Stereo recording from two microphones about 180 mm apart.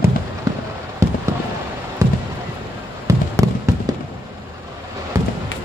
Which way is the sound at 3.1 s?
20° right (ahead or behind).